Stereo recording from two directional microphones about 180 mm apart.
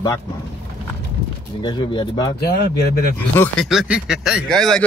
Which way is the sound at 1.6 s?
25° left (ahead or behind).